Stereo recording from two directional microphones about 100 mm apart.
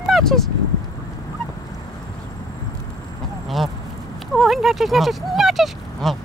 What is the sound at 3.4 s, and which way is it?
Speech, centre (ahead or behind).